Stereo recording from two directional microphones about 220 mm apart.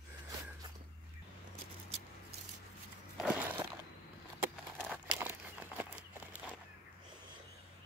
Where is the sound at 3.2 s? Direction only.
5° right (ahead or behind).